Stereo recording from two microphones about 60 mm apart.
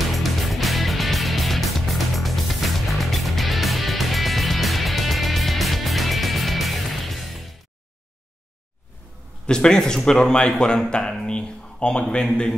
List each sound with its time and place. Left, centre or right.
0.1 s music: centre
9.5 s a man's voice: centre